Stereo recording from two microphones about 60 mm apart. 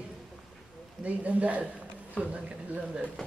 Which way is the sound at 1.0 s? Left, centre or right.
Right.